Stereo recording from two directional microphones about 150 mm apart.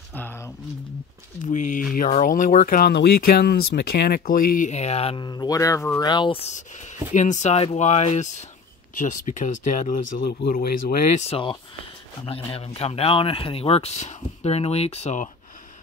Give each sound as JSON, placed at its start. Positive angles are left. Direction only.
{"t": 0.1, "sound": "a sound", "side_deg": 15}
{"t": 1.4, "sound": "speech", "side_deg": 55}
{"t": 5.2, "sound": "speech", "side_deg": 30}
{"t": 6.5, "sound": "speech", "side_deg": 55}
{"t": 11.1, "sound": "speech", "side_deg": 40}
{"t": 12.5, "sound": "speech", "side_deg": 40}